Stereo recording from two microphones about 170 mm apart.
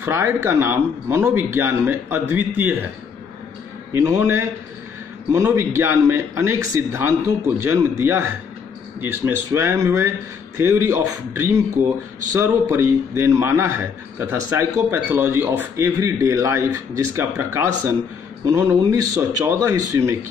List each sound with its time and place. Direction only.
0.0 s a man's voice: 15° right (ahead or behind)
3.9 s a man's voice: 15° right (ahead or behind)